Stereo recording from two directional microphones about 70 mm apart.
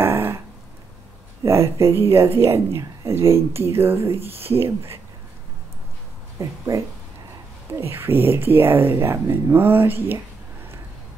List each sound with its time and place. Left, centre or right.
0.0 s a sound: right
1.4 s speech: right
7.8 s speech: right